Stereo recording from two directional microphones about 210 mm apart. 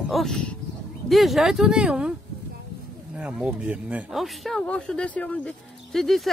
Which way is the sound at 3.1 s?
5° right (ahead or behind).